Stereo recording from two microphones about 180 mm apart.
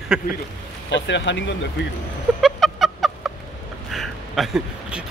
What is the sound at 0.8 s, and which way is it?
Speech, 80° left.